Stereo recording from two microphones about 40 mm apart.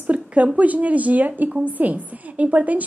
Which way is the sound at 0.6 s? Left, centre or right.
Right.